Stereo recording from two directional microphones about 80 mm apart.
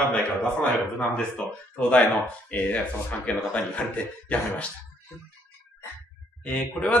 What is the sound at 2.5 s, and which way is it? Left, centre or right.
A man's voice, centre.